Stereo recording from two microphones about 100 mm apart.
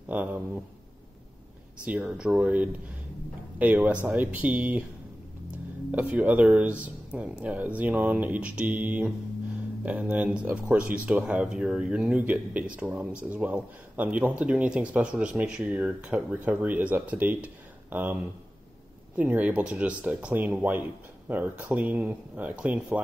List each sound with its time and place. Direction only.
0.1 s speech: 15° right (ahead or behind)
1.9 s speech: 10° right (ahead or behind)
5.9 s speech: 15° right (ahead or behind)